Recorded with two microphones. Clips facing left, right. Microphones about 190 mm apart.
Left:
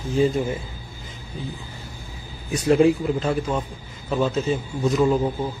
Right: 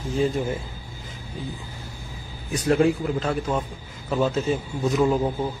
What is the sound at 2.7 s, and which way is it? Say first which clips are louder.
A man's voice: left 3 dB; centre (ahead or behind).